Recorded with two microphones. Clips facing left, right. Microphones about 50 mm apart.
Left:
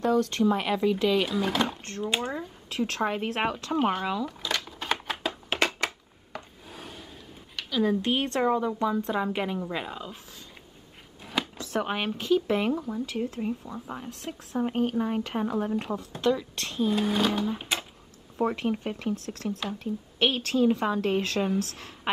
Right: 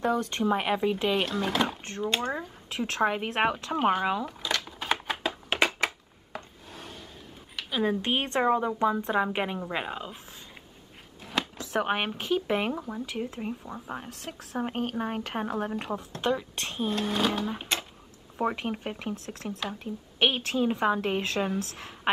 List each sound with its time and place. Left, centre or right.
0.0 s a woman's voice: right
1.2 s speech: centre
2.3 s speech: centre
4.3 s a sound: centre
6.7 s a sound: centre
8.0 s a woman's voice: right
11.2 s a sound: centre
11.6 s a woman's voice: centre
14.2 s speech: centre
14.6 s a woman's voice: centre
15.7 s speech: centre
16.2 s a woman's voice: right
16.9 s speech: centre
18.4 s a woman's voice: centre